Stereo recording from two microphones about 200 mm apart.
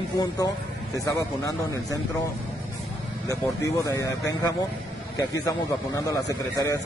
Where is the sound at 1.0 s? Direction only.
15° left (ahead or behind).